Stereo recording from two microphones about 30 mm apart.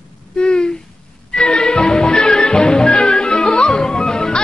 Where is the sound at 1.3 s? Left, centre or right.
Left.